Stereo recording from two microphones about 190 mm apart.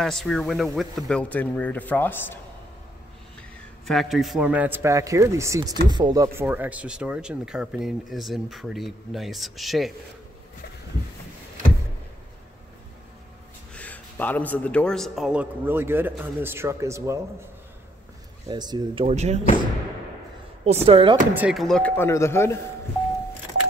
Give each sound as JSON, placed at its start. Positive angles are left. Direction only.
{"t": 0.0, "sound": "a man's voice", "side_deg": 0}
{"t": 3.8, "sound": "a man's voice", "side_deg": 0}
{"t": 13.7, "sound": "a man's voice", "side_deg": 10}
{"t": 18.5, "sound": "speech", "side_deg": -20}
{"t": 19.0, "sound": "speech", "side_deg": -35}
{"t": 20.6, "sound": "speech", "side_deg": -30}
{"t": 21.3, "sound": "speech", "side_deg": -5}